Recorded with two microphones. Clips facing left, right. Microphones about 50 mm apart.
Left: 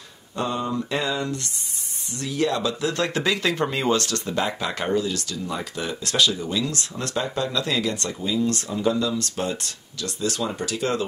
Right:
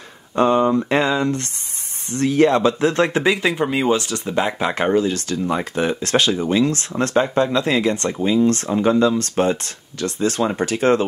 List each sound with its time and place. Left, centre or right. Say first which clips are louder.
0.4 s speech: right 10 dB; right